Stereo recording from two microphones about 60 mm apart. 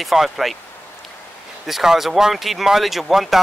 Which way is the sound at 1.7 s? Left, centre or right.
Centre.